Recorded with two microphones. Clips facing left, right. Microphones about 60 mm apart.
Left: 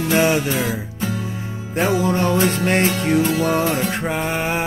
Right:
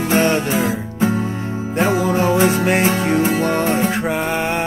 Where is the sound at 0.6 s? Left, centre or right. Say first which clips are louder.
Right 5 dB; right.